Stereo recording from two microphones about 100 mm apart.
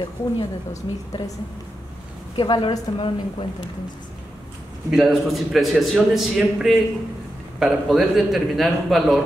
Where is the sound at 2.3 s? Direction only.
55° left (ahead or behind).